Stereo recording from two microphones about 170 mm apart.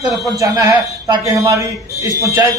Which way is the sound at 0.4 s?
20° right (ahead or behind).